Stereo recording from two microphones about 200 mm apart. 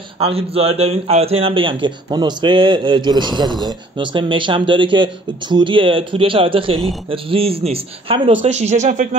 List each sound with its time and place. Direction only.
0.2 s speech: 30° right (ahead or behind)